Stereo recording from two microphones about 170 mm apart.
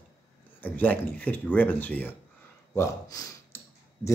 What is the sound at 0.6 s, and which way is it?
Speech, 10° left (ahead or behind).